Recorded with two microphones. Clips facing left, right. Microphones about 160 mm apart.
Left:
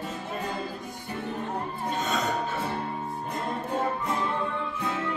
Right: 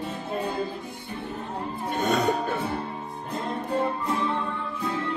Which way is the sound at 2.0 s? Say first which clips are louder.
Right 6 dB; 55° right (ahead or behind).